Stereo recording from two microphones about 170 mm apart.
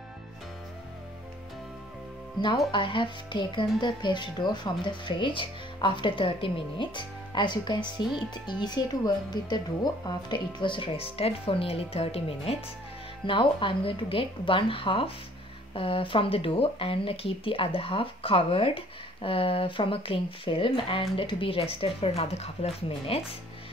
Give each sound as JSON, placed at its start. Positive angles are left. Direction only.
{"t": 2.4, "sound": "speech", "side_deg": 30}